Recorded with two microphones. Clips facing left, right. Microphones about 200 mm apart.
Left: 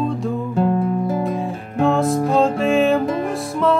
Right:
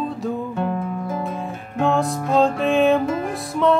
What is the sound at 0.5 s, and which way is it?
Music, 30° left (ahead or behind).